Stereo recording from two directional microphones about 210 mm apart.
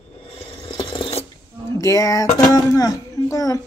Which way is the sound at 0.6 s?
25° left (ahead or behind).